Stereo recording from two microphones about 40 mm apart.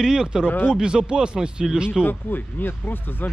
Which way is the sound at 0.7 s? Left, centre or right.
Right.